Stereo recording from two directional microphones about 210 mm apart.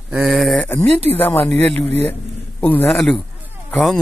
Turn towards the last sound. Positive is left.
turn(degrees=5)  # may be behind; listen again after turning